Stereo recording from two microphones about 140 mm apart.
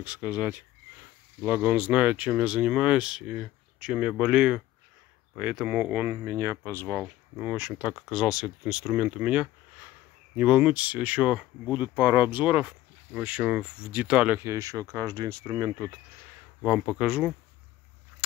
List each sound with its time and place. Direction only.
0.0 s speech: 10° right (ahead or behind)
7.0 s speech: 10° right (ahead or behind); by 16.0 s 25° right (ahead or behind)
16.6 s speech: 10° right (ahead or behind)